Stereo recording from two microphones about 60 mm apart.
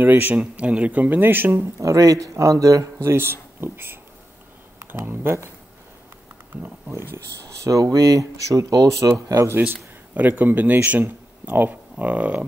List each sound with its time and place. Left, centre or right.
0.0 s speech: right
1.8 s speech: right
3.0 s speech: right
6.5 s speech: right
6.9 s speech: right
9.6 s speech: right